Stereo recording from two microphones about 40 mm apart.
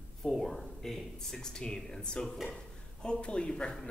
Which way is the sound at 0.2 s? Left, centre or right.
Centre.